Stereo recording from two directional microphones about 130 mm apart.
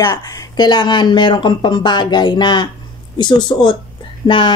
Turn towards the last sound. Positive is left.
turn(degrees=40)  # may be behind; listen again after turning